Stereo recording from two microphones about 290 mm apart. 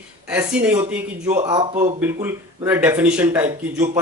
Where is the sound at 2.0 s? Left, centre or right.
Centre.